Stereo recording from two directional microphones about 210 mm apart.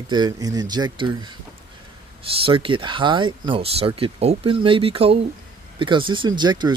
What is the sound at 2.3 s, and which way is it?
Speech, 25° right (ahead or behind).